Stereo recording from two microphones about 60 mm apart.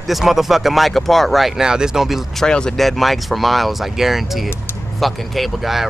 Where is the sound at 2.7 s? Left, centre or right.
Centre.